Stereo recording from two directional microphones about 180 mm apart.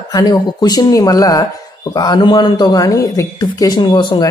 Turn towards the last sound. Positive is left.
turn(degrees=25)  # may be behind; listen again after turning